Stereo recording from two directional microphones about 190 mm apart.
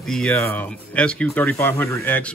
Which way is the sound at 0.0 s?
5° left (ahead or behind).